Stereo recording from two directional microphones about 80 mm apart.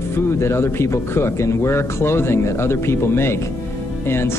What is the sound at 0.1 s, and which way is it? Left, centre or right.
Speech, left.